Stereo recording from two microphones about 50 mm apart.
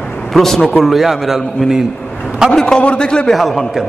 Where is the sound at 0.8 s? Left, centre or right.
Centre.